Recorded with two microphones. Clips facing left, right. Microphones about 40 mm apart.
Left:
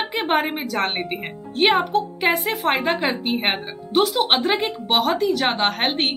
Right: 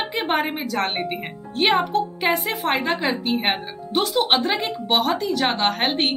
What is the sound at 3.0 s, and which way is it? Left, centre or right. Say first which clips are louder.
Speech: even; centre.